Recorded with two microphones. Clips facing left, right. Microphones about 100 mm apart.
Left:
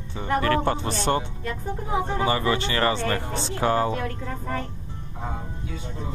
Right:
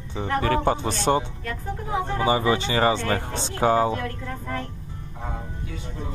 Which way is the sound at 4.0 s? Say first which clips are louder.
Left 1 dB; 25° left (ahead or behind).